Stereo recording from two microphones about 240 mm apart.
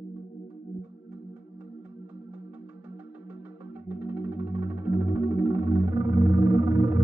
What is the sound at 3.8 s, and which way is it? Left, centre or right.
Music, centre.